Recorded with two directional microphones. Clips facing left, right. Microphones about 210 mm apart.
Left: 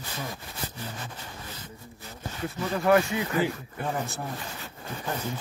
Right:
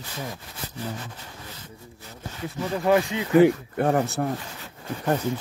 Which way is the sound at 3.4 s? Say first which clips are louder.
Right 11 dB; 65° right (ahead or behind).